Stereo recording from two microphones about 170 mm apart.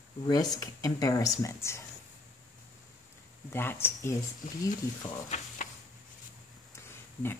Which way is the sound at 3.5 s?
15° left (ahead or behind).